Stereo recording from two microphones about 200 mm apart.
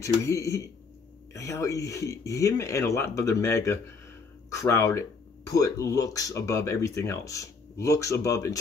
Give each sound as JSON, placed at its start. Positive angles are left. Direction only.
{"t": 0.2, "sound": "speech", "side_deg": 15}